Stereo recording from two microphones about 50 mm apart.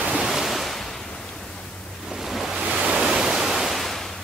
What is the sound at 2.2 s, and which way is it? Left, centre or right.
Waves, centre.